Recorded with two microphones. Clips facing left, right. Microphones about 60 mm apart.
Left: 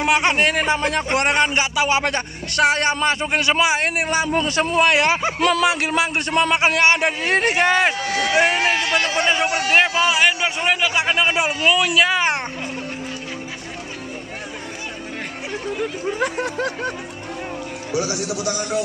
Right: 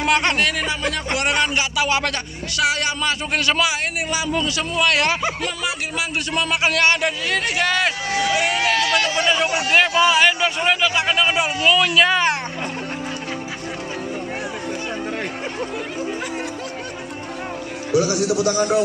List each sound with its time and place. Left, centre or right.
0.0 s a man's voice: centre
0.5 s a man's voice: left
2.5 s a man's voice: left
3.3 s a man's voice: left
3.7 s a man's voice: left
4.9 s a man's voice: left
5.4 s speech: left
6.3 s a man's voice: left
6.7 s a man's voice: left
9.7 s a man's voice: centre
11.8 s a man's voice: centre
17.9 s a man's voice: left